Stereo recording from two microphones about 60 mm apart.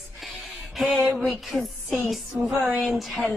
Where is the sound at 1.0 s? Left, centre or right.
Right.